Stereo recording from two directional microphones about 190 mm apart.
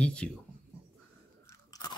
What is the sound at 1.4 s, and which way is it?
Crunch, 15° left (ahead or behind).